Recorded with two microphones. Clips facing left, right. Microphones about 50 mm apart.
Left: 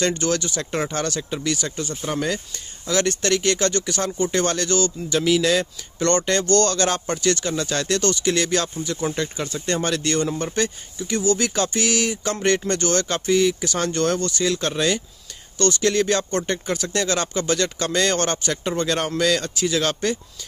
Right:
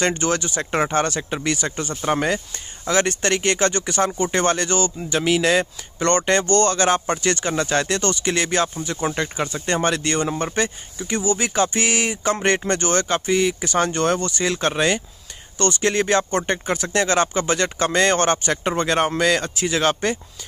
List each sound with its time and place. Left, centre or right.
0.0 s speech: right